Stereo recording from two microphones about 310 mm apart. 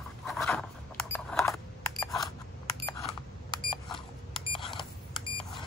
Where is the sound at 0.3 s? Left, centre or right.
Centre.